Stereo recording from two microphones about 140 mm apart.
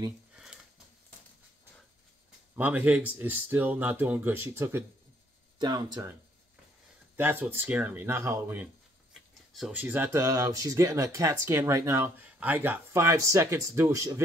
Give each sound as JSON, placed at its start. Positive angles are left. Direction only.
{"t": 2.5, "sound": "speech", "side_deg": -10}
{"t": 5.6, "sound": "speech", "side_deg": -30}
{"t": 7.2, "sound": "speech", "side_deg": -15}
{"t": 9.1, "sound": "a sound", "side_deg": 0}
{"t": 9.7, "sound": "speech", "side_deg": -10}